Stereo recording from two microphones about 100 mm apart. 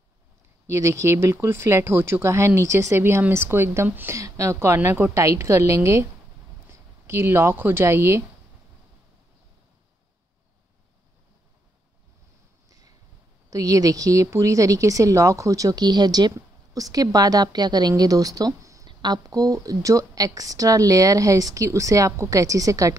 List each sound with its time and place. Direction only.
0.7 s speech: 30° right (ahead or behind)
12.6 s a sound: 40° right (ahead or behind)
13.5 s a woman's voice: 35° right (ahead or behind)
18.9 s a woman's voice: 50° right (ahead or behind)